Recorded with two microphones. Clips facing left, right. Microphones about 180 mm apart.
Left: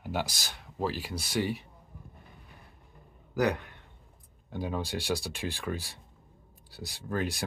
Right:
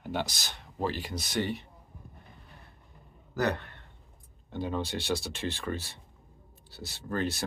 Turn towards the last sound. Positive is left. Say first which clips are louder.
# right 1 dB
turn(degrees=10)  # may be behind; listen again after turning